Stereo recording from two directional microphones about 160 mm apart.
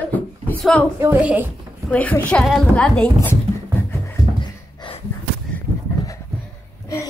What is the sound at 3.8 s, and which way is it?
Music, 15° left (ahead or behind).